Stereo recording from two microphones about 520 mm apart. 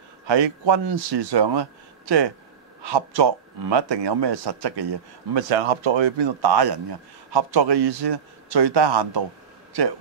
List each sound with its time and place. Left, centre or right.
0.3 s a man's voice: right
5.5 s a man's voice: right